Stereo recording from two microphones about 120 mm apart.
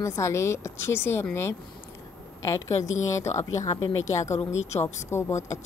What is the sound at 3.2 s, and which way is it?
Speech, 70° left (ahead or behind).